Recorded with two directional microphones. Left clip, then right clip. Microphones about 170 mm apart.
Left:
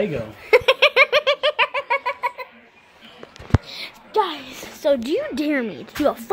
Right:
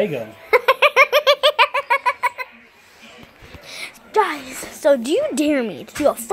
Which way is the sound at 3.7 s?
10° right (ahead or behind).